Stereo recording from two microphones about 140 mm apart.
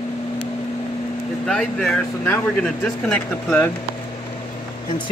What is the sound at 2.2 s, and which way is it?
Speech, 15° left (ahead or behind).